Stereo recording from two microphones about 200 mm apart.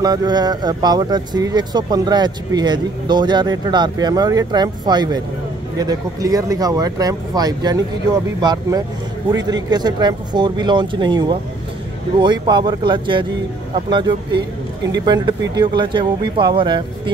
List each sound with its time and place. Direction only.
0.0 s speech: 20° right (ahead or behind)